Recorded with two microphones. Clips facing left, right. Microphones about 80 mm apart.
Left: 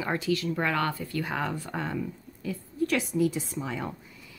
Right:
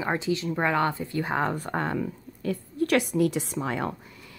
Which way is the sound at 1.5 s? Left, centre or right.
Right.